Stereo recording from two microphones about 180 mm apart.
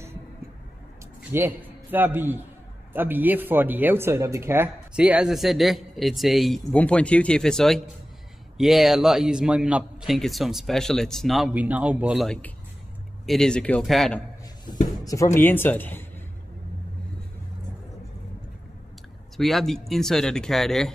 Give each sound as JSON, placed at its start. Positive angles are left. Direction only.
{"t": 1.3, "sound": "a man's voice", "side_deg": -10}
{"t": 12.3, "sound": "speech", "side_deg": 10}
{"t": 14.7, "sound": "speech", "side_deg": 25}
{"t": 19.3, "sound": "speech", "side_deg": 0}